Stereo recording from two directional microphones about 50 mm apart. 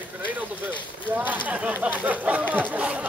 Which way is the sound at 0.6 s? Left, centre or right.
Right.